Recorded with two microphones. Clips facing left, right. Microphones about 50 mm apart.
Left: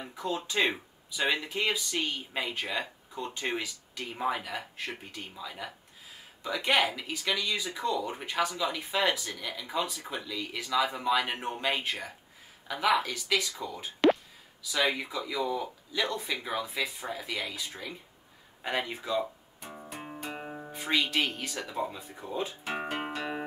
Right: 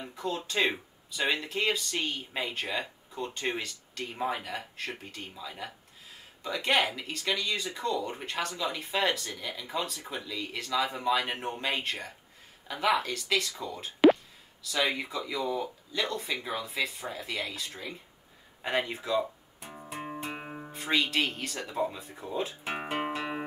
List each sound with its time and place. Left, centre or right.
0.0 s speech: centre
5.4 s speech: centre
9.3 s speech: centre
18.6 s guitar: centre
20.2 s music: right
20.6 s speech: centre
22.6 s music: centre